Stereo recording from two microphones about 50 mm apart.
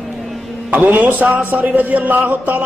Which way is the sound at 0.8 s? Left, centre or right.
Right.